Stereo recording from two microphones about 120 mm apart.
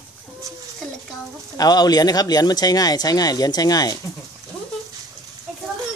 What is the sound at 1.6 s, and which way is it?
Speech, 35° left (ahead or behind).